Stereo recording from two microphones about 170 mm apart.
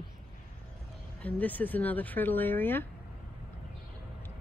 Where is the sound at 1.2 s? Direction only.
10° left (ahead or behind).